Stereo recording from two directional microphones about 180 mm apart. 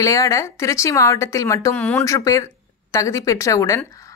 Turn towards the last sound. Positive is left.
turn(degrees=15)  # may be behind; listen again after turning